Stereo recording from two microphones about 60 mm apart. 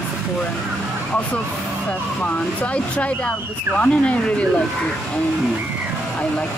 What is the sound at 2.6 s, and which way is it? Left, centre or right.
Speech, left.